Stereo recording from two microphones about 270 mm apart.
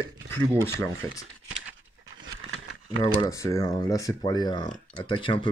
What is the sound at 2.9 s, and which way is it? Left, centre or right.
Speech, centre.